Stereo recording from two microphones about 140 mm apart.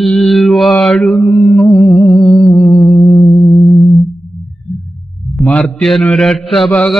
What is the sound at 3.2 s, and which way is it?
Music, 40° left (ahead or behind).